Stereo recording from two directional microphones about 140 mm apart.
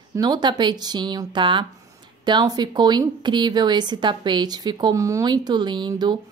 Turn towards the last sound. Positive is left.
turn(degrees=-30)  # may be behind; listen again after turning